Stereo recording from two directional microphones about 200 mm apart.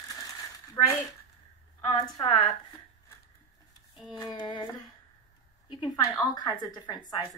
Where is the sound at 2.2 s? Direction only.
25° left (ahead or behind).